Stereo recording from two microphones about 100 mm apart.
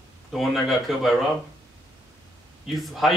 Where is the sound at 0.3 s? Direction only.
Centre (ahead or behind).